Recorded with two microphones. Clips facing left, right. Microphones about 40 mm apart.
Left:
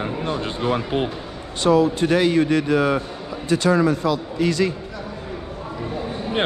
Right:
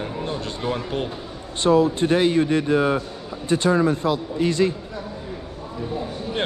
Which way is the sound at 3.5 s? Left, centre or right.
Left.